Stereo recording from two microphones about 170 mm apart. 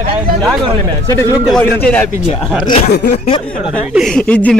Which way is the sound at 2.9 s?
75° left (ahead or behind).